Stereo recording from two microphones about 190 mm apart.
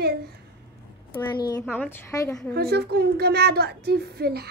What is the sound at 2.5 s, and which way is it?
A child's voice, 60° right (ahead or behind).